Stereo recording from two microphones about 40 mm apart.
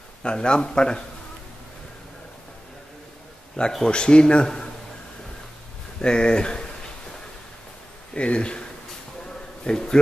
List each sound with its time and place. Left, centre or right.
0.2 s speech: left
3.8 s speech: left
5.9 s speech: left
8.1 s speech: left
9.7 s speech: centre